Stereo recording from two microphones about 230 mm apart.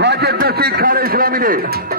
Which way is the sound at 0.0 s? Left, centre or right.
Right.